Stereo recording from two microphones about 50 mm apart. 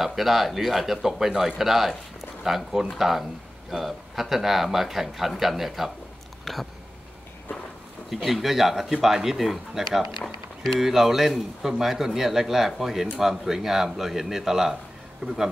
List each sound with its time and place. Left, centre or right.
0.0 s a man's voice: centre
6.4 s a sound: centre
8.1 s a man's voice: centre